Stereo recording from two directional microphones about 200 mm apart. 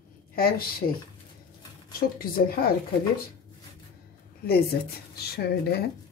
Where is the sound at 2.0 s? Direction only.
45° left (ahead or behind).